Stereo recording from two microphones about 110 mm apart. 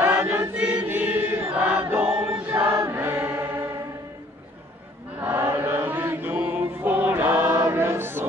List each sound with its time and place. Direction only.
0.0 s chant: 15° right (ahead or behind)
5.2 s chant: 20° right (ahead or behind)